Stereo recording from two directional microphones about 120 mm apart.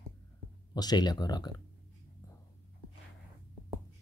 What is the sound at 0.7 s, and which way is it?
Speech, 35° left (ahead or behind).